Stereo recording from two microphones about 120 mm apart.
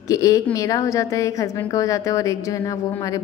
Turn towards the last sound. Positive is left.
turn(degrees=30)  # may be behind; listen again after turning